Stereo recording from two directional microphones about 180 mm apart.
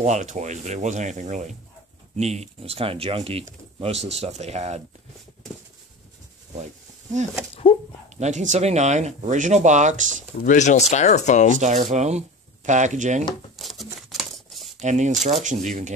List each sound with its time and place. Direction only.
0.0 s speech: 40° right (ahead or behind)
7.6 s speech: 30° left (ahead or behind)
8.2 s speech: 40° right (ahead or behind)
10.4 s speech: 45° left (ahead or behind)
11.6 s speech: 40° right (ahead or behind)
13.6 s a sound: centre (ahead or behind)
14.8 s speech: 40° right (ahead or behind)